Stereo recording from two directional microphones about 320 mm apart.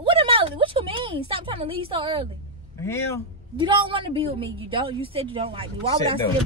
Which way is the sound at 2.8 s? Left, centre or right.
Centre.